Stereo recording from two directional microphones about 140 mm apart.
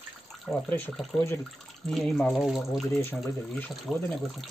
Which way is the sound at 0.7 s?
15° left (ahead or behind).